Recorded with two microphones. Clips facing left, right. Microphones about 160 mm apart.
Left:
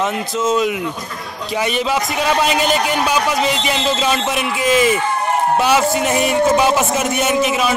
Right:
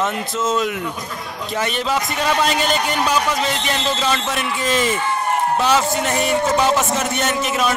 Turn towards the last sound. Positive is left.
turn(degrees=5)  # may be behind; listen again after turning